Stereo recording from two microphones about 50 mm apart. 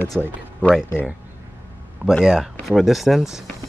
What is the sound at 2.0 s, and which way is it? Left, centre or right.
Speech, right.